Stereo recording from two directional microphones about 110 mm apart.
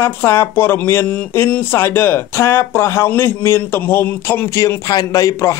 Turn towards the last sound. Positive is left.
turn(degrees=30)  # may be behind; listen again after turning